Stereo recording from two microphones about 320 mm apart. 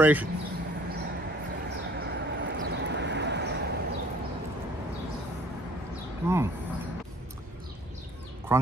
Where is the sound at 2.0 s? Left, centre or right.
Right.